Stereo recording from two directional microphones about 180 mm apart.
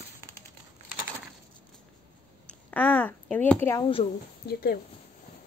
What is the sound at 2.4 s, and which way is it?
Speech, 10° left (ahead or behind).